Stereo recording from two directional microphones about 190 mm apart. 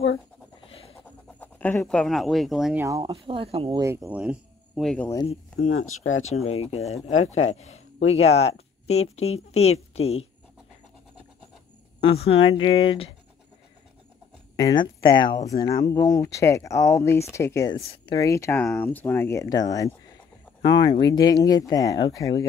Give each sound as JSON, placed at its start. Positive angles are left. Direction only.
{"t": 0.6, "sound": "a sound", "side_deg": 30}
{"t": 1.0, "sound": "speech", "side_deg": 10}
{"t": 2.8, "sound": "speech", "side_deg": -20}
{"t": 3.8, "sound": "speech", "side_deg": -15}
{"t": 5.7, "sound": "speech", "side_deg": 90}
{"t": 6.2, "sound": "a woman's voice", "side_deg": 35}
{"t": 8.0, "sound": "a woman's voice", "side_deg": 35}
{"t": 12.0, "sound": "speech", "side_deg": 30}
{"t": 14.6, "sound": "speech", "side_deg": 20}
{"t": 17.7, "sound": "speech", "side_deg": 30}
{"t": 18.1, "sound": "speech", "side_deg": 15}